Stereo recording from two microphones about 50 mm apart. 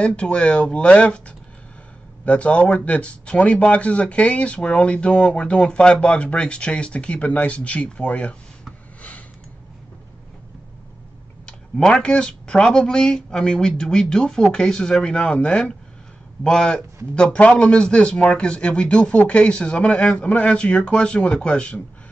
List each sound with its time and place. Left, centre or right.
0.0 s speech: left
2.2 s speech: left
11.7 s speech: centre